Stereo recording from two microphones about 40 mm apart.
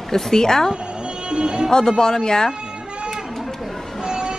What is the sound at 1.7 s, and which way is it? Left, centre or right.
Speech, centre.